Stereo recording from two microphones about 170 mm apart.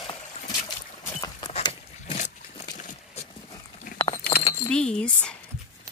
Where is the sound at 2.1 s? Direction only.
45° left (ahead or behind).